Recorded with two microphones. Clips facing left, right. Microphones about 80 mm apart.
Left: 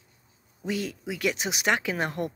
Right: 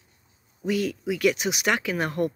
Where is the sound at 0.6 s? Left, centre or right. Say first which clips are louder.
Right 5 dB; left.